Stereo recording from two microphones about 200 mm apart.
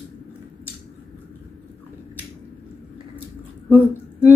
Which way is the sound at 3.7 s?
10° right (ahead or behind).